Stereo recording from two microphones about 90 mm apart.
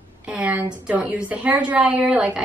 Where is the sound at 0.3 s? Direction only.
15° right (ahead or behind).